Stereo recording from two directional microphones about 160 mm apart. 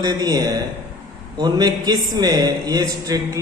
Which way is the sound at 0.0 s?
25° right (ahead or behind).